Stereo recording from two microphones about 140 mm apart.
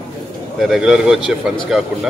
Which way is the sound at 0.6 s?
Centre (ahead or behind).